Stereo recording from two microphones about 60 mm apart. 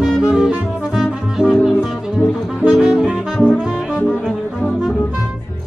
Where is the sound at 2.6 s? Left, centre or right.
Centre.